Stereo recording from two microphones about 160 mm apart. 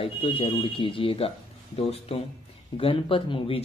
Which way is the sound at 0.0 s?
35° left (ahead or behind).